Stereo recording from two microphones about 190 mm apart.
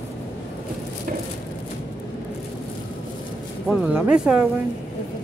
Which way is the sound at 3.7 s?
5° right (ahead or behind).